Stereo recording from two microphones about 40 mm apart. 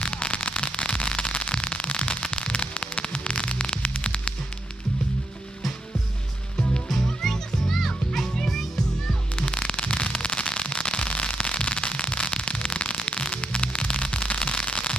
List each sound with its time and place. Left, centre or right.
0.0 s static: left
3.8 s hum: left
6.9 s music: centre
9.3 s fireworks: left
13.3 s a sound: left